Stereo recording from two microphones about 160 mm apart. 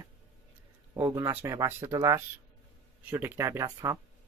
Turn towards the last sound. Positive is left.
turn(degrees=-20)  # may be behind; listen again after turning